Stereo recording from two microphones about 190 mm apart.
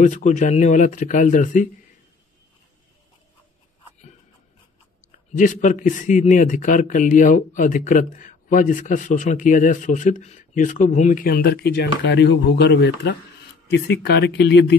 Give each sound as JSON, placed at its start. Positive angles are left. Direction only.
{"t": 0.0, "sound": "speech", "side_deg": 40}
{"t": 5.4, "sound": "a man's voice", "side_deg": 40}